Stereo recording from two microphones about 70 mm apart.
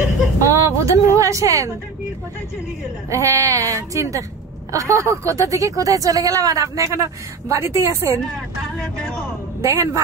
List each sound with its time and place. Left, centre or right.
0.4 s a sound: right
3.1 s speech: right
8.7 s speech: centre
9.6 s speech: right